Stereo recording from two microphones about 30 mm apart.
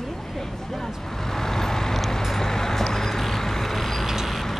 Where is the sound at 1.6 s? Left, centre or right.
Centre.